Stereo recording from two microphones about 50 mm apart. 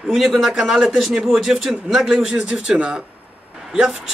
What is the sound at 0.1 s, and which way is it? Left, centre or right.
A man's voice, centre.